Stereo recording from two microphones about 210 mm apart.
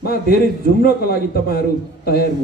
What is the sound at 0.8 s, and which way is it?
A man's voice, 45° left (ahead or behind).